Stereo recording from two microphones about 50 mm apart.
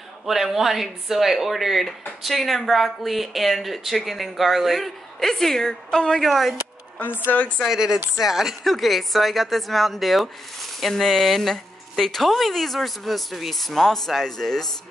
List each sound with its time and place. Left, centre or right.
0.2 s a woman's voice: centre
6.2 s a woman's voice: centre
7.2 s speech: left
7.6 s a woman's voice: centre